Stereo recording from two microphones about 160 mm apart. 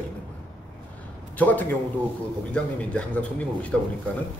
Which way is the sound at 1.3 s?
10° left (ahead or behind).